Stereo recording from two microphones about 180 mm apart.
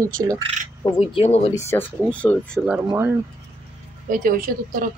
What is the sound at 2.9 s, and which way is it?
Speech, 15° right (ahead or behind).